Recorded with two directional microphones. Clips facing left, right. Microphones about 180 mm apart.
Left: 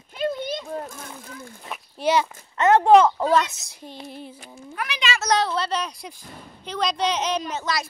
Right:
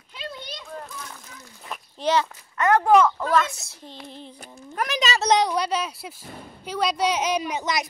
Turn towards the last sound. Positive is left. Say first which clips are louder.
# right 1 dB
turn(degrees=-20)  # may be behind; listen again after turning